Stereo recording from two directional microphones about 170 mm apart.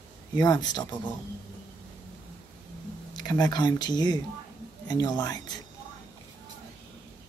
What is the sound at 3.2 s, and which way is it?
Speech, 20° left (ahead or behind).